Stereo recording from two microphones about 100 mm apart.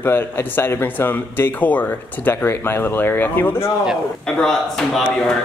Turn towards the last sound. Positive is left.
turn(degrees=5)  # may be behind; listen again after turning